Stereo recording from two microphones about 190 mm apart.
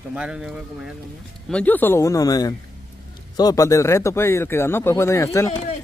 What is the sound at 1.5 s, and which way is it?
Speech, 5° left (ahead or behind).